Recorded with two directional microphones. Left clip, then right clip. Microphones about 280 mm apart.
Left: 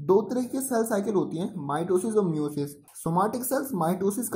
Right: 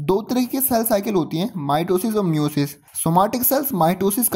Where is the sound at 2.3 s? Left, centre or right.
Right.